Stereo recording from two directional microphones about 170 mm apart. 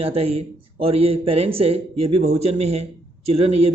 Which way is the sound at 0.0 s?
35° right (ahead or behind).